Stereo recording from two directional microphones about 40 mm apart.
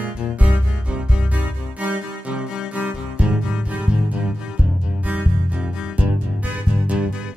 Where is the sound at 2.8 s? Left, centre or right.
Right.